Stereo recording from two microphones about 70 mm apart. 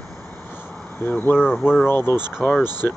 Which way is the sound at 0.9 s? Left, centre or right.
Left.